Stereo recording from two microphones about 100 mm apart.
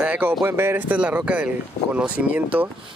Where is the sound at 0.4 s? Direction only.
20° right (ahead or behind).